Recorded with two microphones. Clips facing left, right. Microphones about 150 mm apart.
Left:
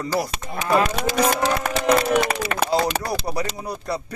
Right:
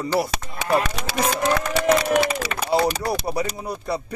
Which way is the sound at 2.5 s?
65° left (ahead or behind).